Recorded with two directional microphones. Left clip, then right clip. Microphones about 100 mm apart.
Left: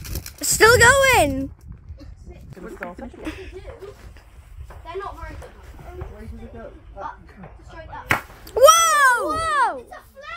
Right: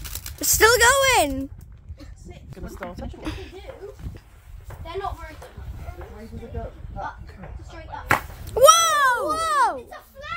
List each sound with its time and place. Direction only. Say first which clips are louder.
0.0 s speech: even; 5° right (ahead or behind)
2.9 s speech: left 1 dB; 5° right (ahead or behind)
8.1 s a sound: even; centre (ahead or behind)
9.3 s a child's voice: even; 40° right (ahead or behind)